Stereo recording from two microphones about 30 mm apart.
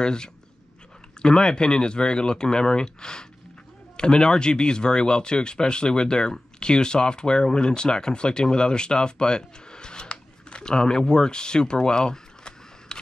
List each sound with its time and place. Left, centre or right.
0.0 s speech: left